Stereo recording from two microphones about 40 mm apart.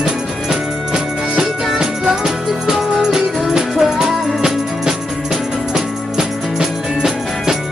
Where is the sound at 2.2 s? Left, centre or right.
Centre.